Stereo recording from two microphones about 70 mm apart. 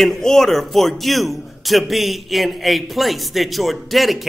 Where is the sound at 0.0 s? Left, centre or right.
Centre.